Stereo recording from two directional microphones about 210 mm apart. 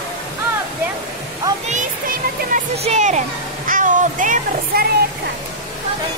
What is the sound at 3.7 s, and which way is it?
Music, 40° right (ahead or behind).